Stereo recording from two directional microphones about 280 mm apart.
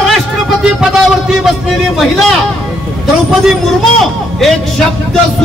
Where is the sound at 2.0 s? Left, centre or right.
Centre.